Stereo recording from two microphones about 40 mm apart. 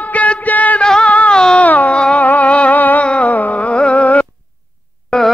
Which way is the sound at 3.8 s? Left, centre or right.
Left.